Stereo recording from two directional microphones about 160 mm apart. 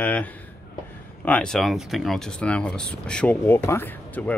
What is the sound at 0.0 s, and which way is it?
Speech, 10° left (ahead or behind).